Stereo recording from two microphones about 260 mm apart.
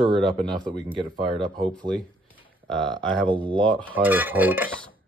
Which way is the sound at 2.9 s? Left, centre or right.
Centre.